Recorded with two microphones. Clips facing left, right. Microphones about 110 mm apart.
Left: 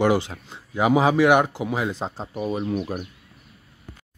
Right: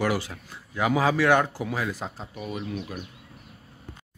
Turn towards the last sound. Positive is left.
turn(degrees=35)  # may be behind; listen again after turning